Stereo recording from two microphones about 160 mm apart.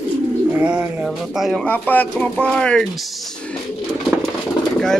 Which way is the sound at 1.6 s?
10° left (ahead or behind).